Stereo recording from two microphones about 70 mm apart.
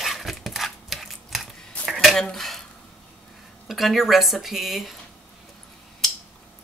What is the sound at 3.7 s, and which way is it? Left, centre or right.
Speech, centre.